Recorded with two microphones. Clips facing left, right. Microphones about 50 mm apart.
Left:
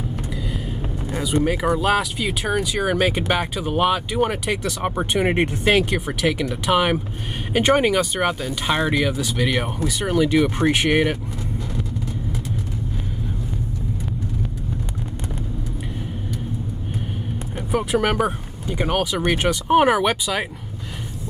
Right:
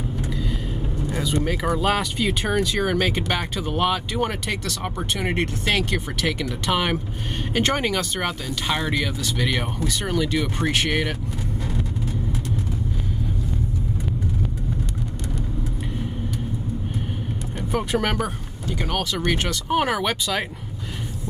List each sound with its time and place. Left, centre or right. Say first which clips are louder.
1.1 s speech: left 4 dB; centre
17.6 s speech: left 3 dB; centre
18.2 s speech: left 5 dB; centre